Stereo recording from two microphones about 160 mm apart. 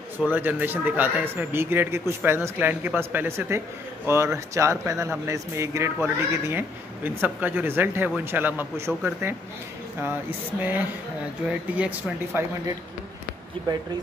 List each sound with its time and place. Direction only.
0.3 s speech: 10° right (ahead or behind)
11.7 s speech: 10° right (ahead or behind)
13.6 s speech: 30° right (ahead or behind)